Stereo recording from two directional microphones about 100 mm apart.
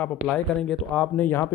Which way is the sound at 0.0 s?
10° left (ahead or behind).